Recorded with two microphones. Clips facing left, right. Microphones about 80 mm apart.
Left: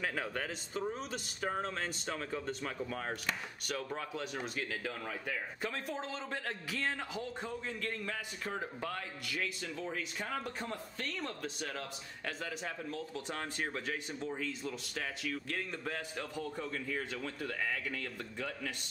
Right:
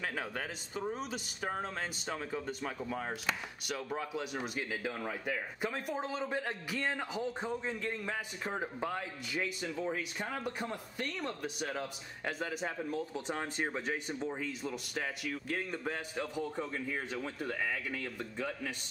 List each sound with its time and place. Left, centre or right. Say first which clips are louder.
0.0 s speech: left 1 dB; centre